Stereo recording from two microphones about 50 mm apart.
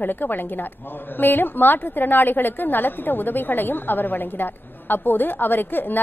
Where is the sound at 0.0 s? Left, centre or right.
Left.